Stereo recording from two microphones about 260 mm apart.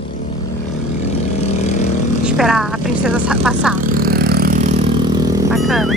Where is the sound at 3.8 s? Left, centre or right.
Right; by 5.4 s centre.